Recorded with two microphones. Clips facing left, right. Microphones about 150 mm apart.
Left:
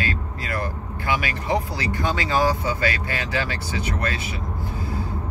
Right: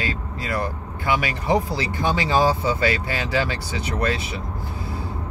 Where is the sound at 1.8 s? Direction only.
25° right (ahead or behind).